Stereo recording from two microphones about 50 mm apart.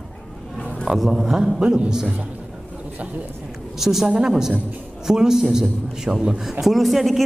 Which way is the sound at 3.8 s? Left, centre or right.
Centre.